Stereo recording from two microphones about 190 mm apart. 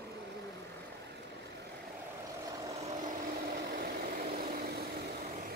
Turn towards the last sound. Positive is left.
turn(degrees=-50)  # may be behind; listen again after turning